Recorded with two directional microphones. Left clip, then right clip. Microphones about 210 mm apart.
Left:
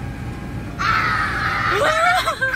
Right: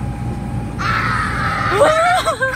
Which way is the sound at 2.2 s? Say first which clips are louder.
Right 3 dB; 15° right (ahead or behind).